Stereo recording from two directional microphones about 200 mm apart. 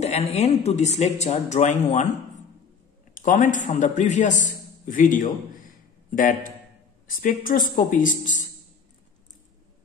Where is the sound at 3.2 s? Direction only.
40° left (ahead or behind).